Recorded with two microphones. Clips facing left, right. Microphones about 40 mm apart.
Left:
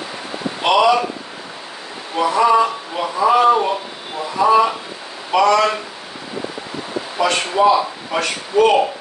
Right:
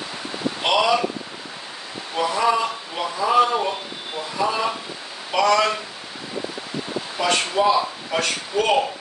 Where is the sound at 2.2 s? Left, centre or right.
Centre.